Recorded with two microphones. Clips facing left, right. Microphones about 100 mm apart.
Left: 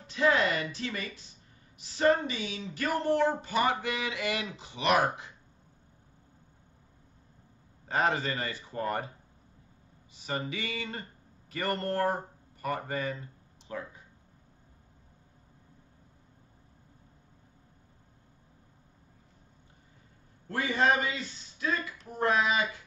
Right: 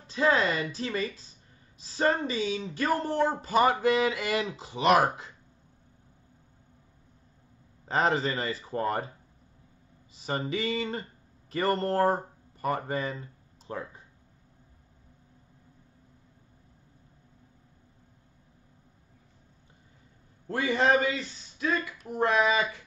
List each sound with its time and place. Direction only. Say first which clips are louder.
0.0 s speech: right 1 dB; 35° right (ahead or behind)
7.9 s speech: right 3 dB; 30° right (ahead or behind)
10.1 s speech: right 4 dB; 35° right (ahead or behind)
20.4 s speech: right 2 dB; 30° right (ahead or behind)